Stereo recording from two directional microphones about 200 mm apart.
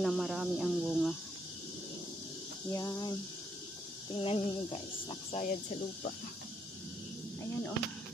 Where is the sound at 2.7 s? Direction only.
20° left (ahead or behind).